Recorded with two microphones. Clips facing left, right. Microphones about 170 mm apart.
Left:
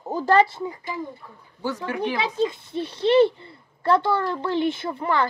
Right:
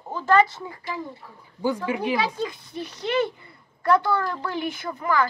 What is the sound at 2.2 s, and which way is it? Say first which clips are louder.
A woman's voice: left 3 dB; 25° left (ahead or behind).